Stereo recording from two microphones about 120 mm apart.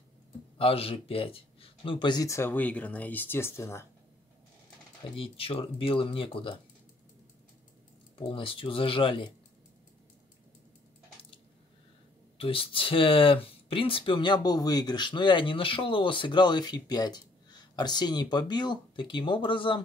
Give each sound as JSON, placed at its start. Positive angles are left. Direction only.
{"t": 0.6, "sound": "speech", "side_deg": 50}
{"t": 2.2, "sound": "speech", "side_deg": 20}
{"t": 5.1, "sound": "speech", "side_deg": 50}
{"t": 8.2, "sound": "speech", "side_deg": 45}
{"t": 12.4, "sound": "speech", "side_deg": 50}